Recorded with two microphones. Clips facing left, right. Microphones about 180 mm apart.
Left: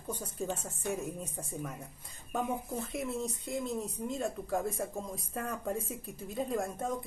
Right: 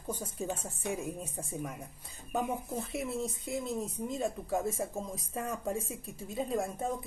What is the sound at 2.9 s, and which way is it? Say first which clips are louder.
Speech: right 1 dB; 5° right (ahead or behind).